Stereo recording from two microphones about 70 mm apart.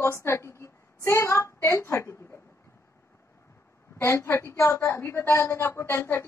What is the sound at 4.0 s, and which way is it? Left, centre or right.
A woman's voice, left.